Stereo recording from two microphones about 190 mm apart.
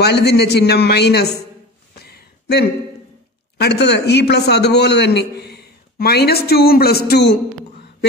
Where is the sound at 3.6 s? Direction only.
60° left (ahead or behind).